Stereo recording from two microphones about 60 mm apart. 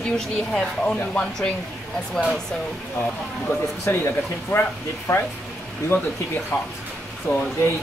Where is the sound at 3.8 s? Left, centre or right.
Left.